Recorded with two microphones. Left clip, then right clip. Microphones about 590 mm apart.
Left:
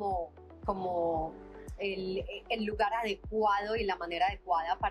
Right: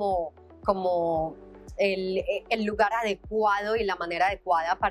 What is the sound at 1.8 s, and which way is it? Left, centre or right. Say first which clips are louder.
Speech: right 10 dB; right.